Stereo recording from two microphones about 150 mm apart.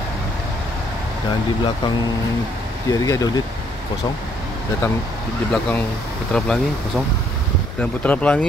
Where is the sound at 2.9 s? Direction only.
25° left (ahead or behind).